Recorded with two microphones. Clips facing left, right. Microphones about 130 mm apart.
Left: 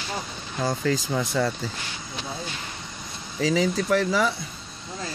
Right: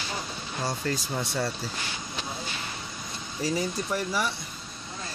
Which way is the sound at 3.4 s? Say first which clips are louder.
Left 6 dB; 90° left.